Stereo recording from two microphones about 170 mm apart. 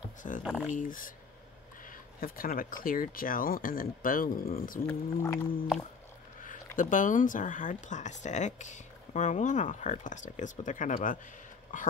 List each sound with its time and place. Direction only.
0.5 s speech: centre (ahead or behind)
0.7 s speech: 55° left (ahead or behind)
4.8 s speech: 15° left (ahead or behind)
6.8 s speech: 50° left (ahead or behind)